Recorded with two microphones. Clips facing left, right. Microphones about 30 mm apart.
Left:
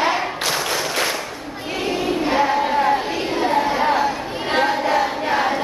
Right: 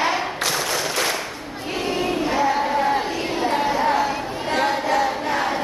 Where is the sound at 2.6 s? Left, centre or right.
Left.